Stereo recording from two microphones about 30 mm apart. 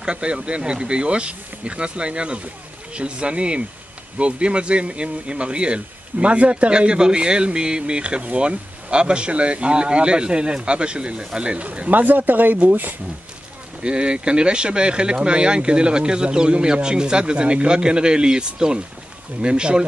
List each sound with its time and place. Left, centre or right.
0.0 s speech: right
6.3 s speech: right
6.7 s speech: right
11.9 s speech: right
13.8 s speech: right